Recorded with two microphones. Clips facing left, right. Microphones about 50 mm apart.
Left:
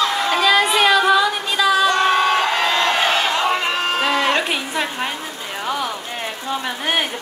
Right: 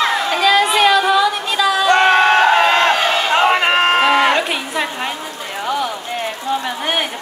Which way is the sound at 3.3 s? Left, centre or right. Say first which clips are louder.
Right 6 dB; right.